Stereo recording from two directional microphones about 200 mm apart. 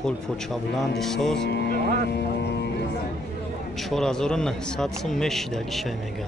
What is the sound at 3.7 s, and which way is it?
A man's voice, centre (ahead or behind).